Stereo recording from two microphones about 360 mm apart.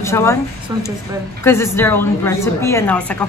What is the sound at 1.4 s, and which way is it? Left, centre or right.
A woman's voice, centre.